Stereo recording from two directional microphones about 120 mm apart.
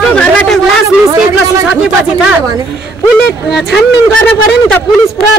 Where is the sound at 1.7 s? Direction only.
5° right (ahead or behind).